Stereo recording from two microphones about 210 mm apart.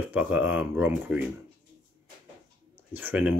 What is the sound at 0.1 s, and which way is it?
Speech, 5° right (ahead or behind).